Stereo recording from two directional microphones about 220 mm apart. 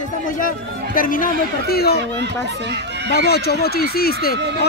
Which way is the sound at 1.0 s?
40° left (ahead or behind).